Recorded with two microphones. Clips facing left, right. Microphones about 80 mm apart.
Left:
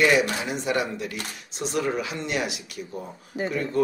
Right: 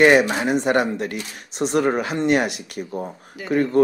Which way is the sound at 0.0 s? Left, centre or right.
Right.